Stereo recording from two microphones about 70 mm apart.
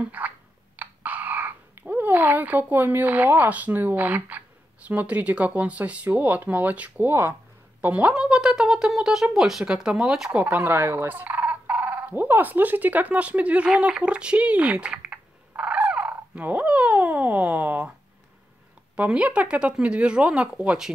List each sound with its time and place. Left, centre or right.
0.0 s a sound: right
1.8 s speech: right
7.1 s speech: right
7.8 s a woman's voice: right
10.4 s telephone bell ringing: right
18.9 s speech: centre